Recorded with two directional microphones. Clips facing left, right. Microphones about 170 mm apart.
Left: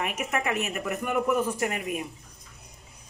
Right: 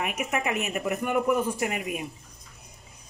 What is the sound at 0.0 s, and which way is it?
Speech, 15° right (ahead or behind).